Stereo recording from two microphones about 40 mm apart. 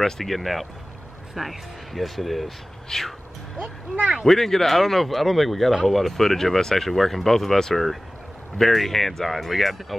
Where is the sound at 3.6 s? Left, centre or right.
Right.